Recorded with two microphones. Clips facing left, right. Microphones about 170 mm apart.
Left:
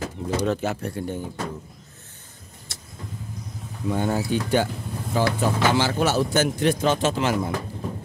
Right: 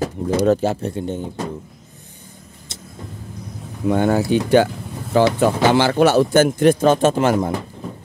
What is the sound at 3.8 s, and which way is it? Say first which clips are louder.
Speech: right 7 dB; 75° right (ahead or behind).